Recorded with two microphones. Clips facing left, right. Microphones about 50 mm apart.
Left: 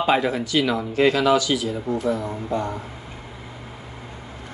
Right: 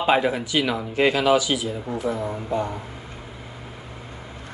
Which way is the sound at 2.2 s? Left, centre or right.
Centre.